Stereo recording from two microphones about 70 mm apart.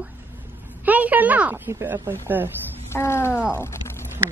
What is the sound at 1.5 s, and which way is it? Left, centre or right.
Speech, right.